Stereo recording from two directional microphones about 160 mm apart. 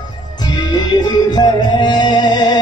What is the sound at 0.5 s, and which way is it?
Music, 30° left (ahead or behind).